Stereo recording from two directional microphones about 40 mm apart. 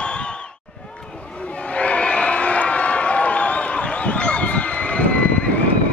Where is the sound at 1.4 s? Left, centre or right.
Left.